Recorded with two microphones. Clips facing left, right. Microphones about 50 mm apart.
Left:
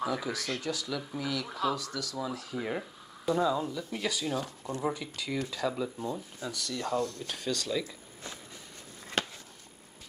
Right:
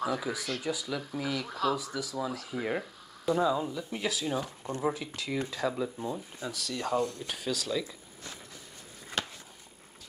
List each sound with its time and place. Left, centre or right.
0.0 s speech: centre
1.5 s speech: centre
1.8 s speech: centre
6.9 s speech: right
7.2 s speech: centre